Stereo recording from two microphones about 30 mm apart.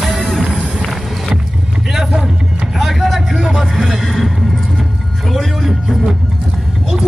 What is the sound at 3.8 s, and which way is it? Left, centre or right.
Music, centre.